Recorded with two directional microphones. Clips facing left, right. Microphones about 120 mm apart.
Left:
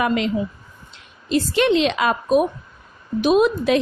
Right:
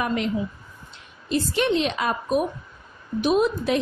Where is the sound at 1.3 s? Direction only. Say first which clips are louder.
Left 5 dB; 90° left.